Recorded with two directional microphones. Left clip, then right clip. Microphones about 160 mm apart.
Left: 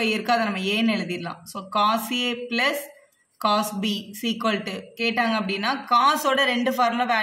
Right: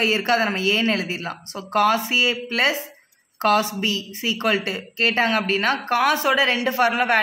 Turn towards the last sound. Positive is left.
turn(degrees=-20)  # may be behind; listen again after turning